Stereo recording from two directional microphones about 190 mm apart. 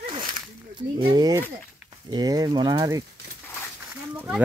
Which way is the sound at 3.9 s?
10° right (ahead or behind).